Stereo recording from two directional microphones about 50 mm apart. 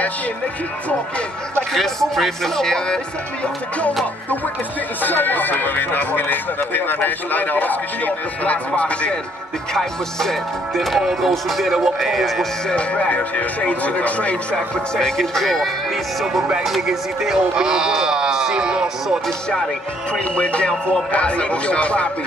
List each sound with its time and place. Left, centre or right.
1.7 s speech: centre
5.0 s speech: left
9.8 s speech: centre
12.6 s speech: left
15.0 s speech: centre
16.6 s speech: centre
20.1 s speech: left